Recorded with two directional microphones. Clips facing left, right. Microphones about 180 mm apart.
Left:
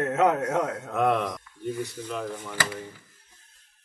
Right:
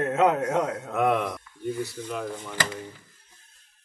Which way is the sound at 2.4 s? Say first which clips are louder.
Right 1 dB; 10° left (ahead or behind).